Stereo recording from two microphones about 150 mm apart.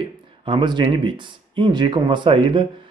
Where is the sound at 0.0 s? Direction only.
35° right (ahead or behind).